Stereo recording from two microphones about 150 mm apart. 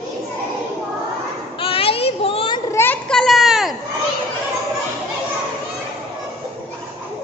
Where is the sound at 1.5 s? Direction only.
40° left (ahead or behind).